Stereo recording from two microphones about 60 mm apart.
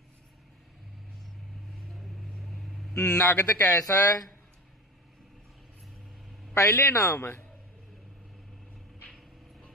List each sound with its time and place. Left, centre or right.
1.9 s vehicle: centre
2.9 s a man's voice: left
3.6 s speech: left
6.5 s a man's voice: left
7.2 s a man's voice: left